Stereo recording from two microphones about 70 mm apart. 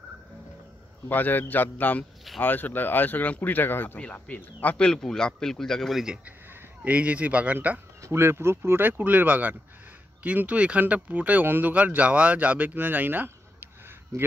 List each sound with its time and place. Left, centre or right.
1.0 s speech: left
4.7 s speech: centre
6.5 s speech: right
8.0 s speech: right